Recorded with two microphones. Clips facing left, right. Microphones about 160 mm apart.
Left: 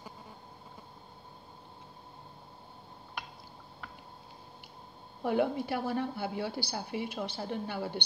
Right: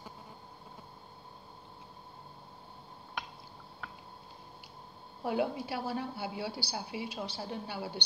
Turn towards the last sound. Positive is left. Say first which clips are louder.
# left 4 dB
turn(degrees=55)  # may be behind; listen again after turning